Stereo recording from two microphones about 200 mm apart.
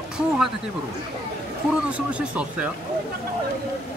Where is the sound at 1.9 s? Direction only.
5° right (ahead or behind).